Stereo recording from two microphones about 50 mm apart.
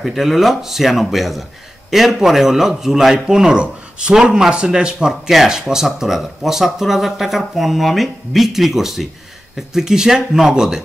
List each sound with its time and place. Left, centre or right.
0.0 s a man's voice: centre